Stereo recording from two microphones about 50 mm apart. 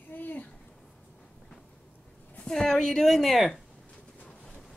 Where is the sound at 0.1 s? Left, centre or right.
Left.